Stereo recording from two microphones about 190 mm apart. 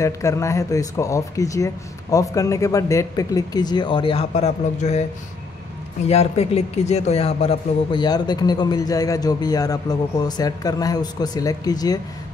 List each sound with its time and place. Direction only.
0.0 s speech: 15° left (ahead or behind); by 5.0 s 35° left (ahead or behind)
6.0 s a man's voice: 35° left (ahead or behind)